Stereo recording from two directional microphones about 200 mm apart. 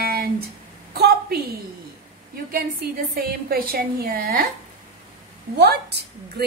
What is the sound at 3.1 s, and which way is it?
A woman's voice, 50° right (ahead or behind).